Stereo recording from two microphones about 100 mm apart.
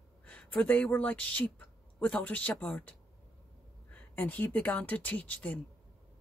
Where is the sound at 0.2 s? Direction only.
10° left (ahead or behind).